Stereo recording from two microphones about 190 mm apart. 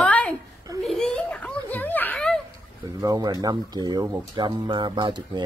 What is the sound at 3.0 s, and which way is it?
Speech, 20° right (ahead or behind).